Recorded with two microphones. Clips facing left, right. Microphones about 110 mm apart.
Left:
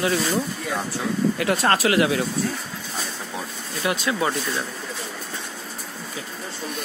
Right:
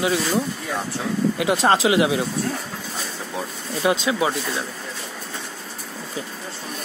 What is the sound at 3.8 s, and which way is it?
Speech, 25° right (ahead or behind).